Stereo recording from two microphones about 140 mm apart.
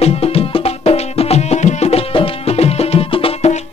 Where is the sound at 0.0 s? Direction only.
45° left (ahead or behind).